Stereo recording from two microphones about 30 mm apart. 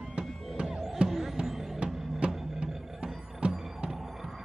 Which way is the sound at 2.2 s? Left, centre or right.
Right.